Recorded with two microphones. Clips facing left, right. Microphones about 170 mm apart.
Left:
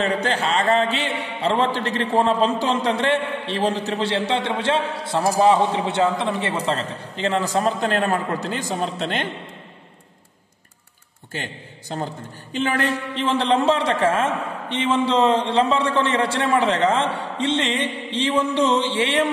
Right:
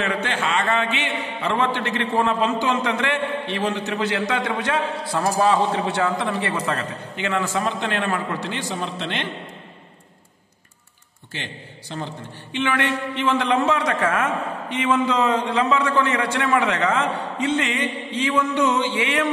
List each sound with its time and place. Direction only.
0.0 s a man's voice: 35° left (ahead or behind)
11.3 s a man's voice: 45° left (ahead or behind)